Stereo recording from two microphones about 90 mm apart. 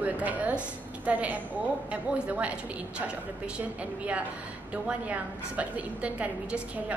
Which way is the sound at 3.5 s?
15° right (ahead or behind).